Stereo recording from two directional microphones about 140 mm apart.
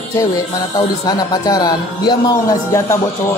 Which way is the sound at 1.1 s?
25° left (ahead or behind).